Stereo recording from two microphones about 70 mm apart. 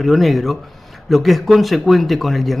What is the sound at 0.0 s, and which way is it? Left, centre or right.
Speech, centre.